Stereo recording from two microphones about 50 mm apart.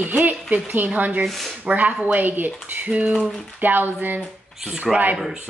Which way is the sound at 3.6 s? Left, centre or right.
Right.